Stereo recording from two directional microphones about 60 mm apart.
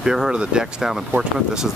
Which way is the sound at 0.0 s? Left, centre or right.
Centre.